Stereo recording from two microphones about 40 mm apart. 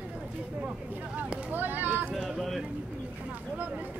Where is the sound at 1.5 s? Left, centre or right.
Right.